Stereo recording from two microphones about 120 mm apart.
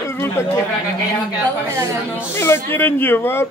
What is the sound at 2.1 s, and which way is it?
Speech, 20° left (ahead or behind).